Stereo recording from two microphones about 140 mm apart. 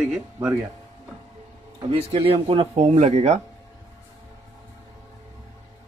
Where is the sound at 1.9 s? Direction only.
45° right (ahead or behind).